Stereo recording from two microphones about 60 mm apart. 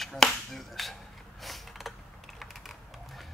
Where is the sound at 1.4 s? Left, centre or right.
Centre.